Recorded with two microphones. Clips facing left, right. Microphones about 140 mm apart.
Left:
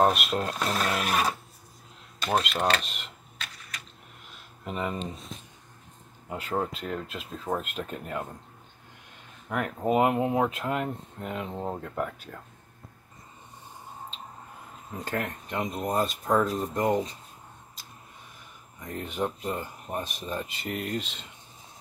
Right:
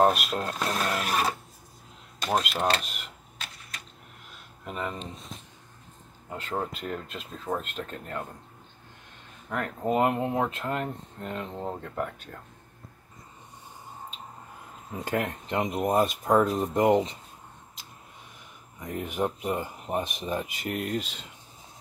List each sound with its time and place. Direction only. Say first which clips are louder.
0.0 s speech: right 1 dB; centre (ahead or behind)
2.4 s speech: even; centre (ahead or behind)
4.6 s speech: left 2 dB; 5° left (ahead or behind)
6.2 s speech: left 2 dB; 10° left (ahead or behind)
9.5 s speech: left 2 dB; 5° left (ahead or behind)
15.0 s speech: right 3 dB; 15° right (ahead or behind)
18.9 s speech: right 2 dB; 10° right (ahead or behind)
20.7 s speech: right 1 dB; centre (ahead or behind)